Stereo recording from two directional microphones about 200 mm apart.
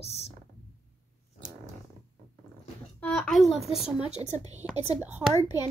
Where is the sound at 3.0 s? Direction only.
5° left (ahead or behind).